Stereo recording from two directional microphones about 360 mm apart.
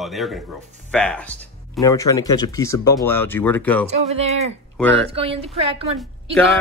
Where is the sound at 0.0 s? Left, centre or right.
Centre.